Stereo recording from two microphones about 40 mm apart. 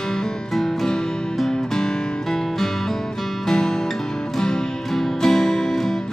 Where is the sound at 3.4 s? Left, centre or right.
Centre.